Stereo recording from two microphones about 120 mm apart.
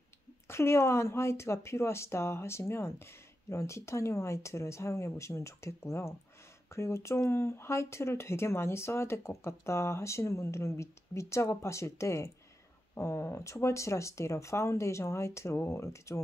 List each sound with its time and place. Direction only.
0.5 s speech: 20° left (ahead or behind)